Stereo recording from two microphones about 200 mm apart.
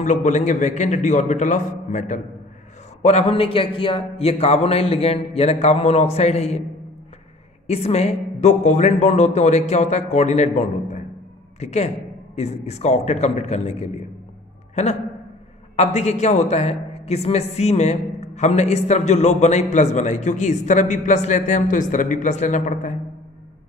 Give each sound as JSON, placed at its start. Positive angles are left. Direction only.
{"t": 0.0, "sound": "a man's voice", "side_deg": 35}
{"t": 7.6, "sound": "a man's voice", "side_deg": 30}
{"t": 15.7, "sound": "a man's voice", "side_deg": 35}